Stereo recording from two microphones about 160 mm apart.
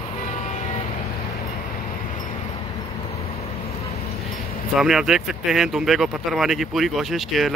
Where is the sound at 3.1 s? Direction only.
40° left (ahead or behind).